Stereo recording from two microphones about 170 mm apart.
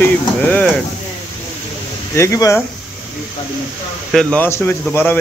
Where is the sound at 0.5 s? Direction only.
5° left (ahead or behind).